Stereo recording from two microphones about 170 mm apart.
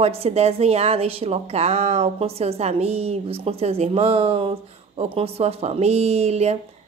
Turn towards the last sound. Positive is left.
turn(degrees=-40)  # may be behind; listen again after turning